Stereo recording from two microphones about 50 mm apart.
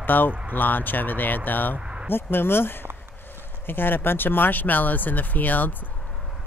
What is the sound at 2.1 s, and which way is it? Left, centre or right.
Speech, left.